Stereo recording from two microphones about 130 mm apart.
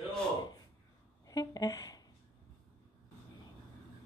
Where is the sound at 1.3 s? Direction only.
30° left (ahead or behind).